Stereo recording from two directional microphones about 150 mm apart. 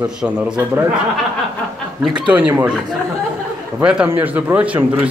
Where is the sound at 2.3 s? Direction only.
10° right (ahead or behind).